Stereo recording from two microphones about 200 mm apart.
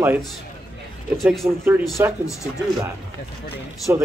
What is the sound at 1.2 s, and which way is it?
Speech, centre (ahead or behind).